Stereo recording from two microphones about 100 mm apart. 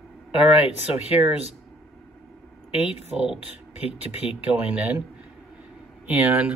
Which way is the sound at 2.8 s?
90° left.